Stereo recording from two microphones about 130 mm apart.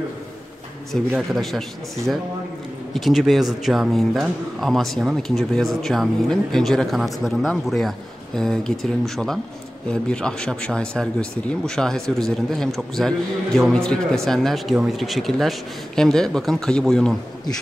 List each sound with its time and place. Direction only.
1.1 s speech: centre (ahead or behind)
2.9 s speech: centre (ahead or behind)